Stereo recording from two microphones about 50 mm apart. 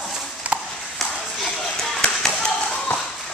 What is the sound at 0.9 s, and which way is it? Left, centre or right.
Music, centre.